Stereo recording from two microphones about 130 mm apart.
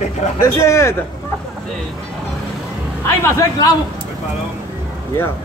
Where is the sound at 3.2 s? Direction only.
25° left (ahead or behind).